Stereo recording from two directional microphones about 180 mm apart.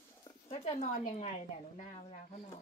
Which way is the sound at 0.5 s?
35° left (ahead or behind).